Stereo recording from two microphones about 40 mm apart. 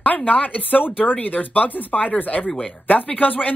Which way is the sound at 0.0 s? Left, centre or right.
Left.